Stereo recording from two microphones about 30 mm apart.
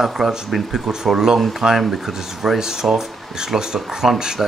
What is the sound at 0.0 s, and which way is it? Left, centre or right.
Speech, centre.